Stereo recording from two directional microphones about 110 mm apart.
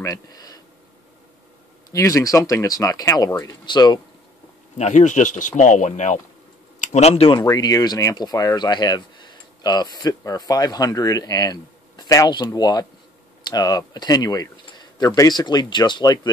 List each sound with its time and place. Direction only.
0.0 s speech: 35° left (ahead or behind)
1.9 s speech: 30° left (ahead or behind)
3.6 s speech: 40° left (ahead or behind)
4.7 s speech: 90° left
6.9 s speech: 75° left (ahead or behind)
7.3 s speech: 35° left (ahead or behind)